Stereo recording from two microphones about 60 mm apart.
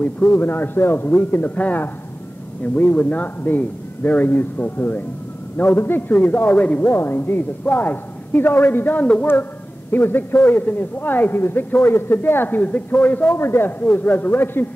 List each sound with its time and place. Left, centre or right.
0.0 s speech: left
6.9 s speech: left
9.3 s a man's voice: left
13.4 s speech: left